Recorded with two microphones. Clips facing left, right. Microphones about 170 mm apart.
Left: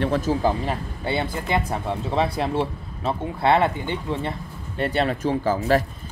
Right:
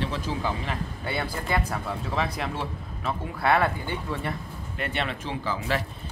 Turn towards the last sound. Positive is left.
turn(degrees=45)  # may be behind; listen again after turning